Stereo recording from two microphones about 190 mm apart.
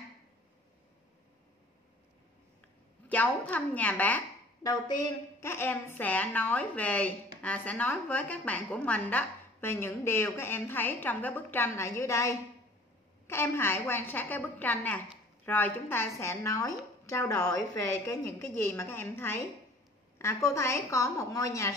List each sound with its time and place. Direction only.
3.1 s a woman's voice: 10° left (ahead or behind)
5.4 s a woman's voice: 10° left (ahead or behind)